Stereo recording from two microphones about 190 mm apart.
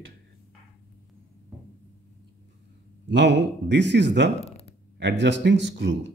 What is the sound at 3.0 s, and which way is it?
Speech, 65° right (ahead or behind).